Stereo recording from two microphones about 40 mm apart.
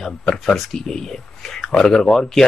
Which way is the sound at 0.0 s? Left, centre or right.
Centre.